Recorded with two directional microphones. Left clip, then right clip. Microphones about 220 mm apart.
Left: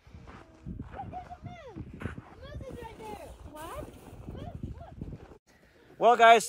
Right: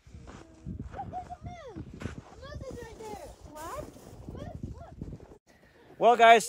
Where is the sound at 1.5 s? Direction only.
30° left (ahead or behind).